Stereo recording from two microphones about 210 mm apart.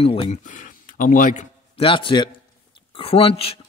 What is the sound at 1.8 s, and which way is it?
Speech, 25° left (ahead or behind).